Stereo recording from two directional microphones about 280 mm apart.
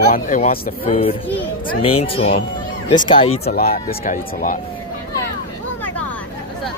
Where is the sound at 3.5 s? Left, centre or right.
Left.